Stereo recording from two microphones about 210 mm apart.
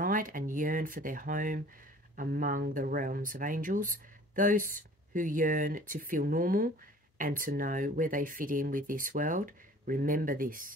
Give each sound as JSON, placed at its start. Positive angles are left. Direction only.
{"t": 0.0, "sound": "speech", "side_deg": -40}